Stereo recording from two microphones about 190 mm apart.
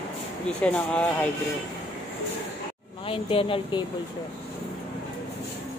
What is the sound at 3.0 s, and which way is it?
Speech, 30° left (ahead or behind).